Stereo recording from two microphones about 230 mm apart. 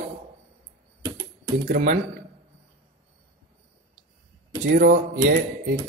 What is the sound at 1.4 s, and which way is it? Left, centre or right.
Speech, right.